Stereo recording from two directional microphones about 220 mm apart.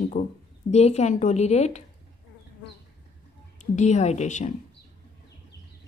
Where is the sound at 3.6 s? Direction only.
30° left (ahead or behind).